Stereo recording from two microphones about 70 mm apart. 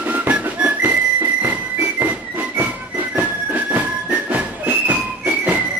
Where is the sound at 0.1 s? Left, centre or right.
Right.